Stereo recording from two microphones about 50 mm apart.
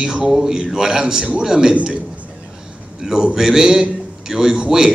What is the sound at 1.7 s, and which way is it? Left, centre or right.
Speech, right.